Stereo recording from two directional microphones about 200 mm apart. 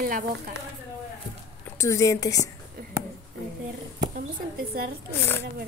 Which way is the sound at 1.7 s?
15° left (ahead or behind).